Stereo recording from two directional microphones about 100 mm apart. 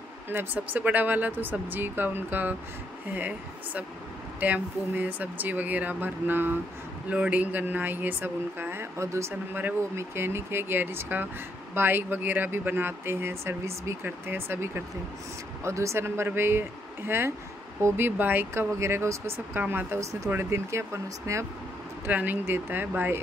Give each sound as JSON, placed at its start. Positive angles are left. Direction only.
{"t": 0.3, "sound": "speech", "side_deg": -20}
{"t": 22.0, "sound": "speech", "side_deg": -15}